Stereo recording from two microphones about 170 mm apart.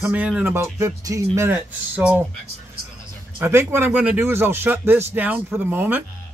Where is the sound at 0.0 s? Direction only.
5° right (ahead or behind).